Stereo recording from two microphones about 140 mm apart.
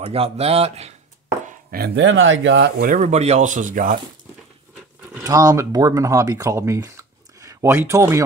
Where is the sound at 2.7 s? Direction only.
70° right (ahead or behind).